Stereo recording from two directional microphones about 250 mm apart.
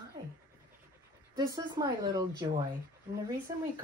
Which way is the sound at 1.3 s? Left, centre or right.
Centre.